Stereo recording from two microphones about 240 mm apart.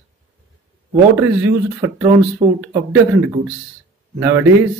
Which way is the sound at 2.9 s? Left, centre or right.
Centre.